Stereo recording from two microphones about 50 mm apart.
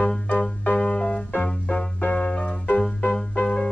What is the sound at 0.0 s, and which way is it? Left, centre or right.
Music, left.